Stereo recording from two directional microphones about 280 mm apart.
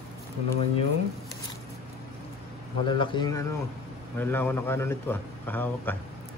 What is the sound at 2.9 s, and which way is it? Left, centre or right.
A man's voice, centre.